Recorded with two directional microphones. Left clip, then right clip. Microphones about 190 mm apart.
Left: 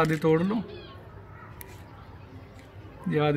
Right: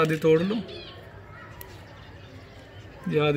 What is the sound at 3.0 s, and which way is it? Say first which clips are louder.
Speech: right 2 dB; 10° left (ahead or behind).